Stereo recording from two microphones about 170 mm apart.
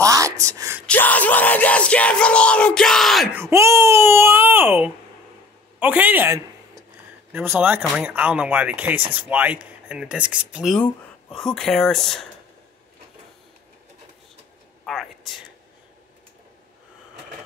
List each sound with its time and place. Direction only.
0.0 s a sound: 20° right (ahead or behind)
0.8 s yell: 10° left (ahead or behind)
3.3 s a man's voice: 15° right (ahead or behind); by 12.2 s centre (ahead or behind)
14.9 s speech: centre (ahead or behind)